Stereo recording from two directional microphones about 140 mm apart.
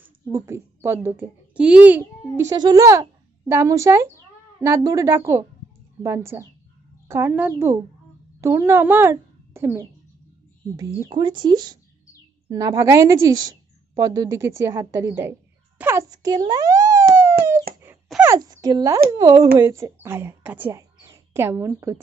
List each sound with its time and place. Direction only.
0.3 s a child's voice: 20° right (ahead or behind)
2.5 s a woman's voice: 30° right (ahead or behind)
11.0 s a woman's voice: 35° right (ahead or behind); by 16.1 s 15° right (ahead or behind)
16.1 s a sound: 30° right (ahead or behind)
17.9 s wail: 15° right (ahead or behind)
18.4 s a woman's voice: 25° right (ahead or behind)